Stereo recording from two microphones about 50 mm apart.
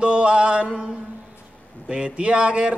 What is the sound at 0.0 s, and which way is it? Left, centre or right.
Mantra, right.